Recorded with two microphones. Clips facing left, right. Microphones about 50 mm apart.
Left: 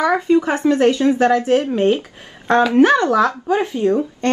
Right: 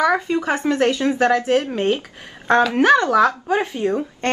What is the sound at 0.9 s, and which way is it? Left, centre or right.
Speech, right.